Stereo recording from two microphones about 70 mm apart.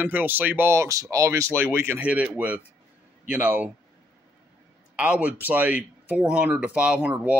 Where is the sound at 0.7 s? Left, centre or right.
Right.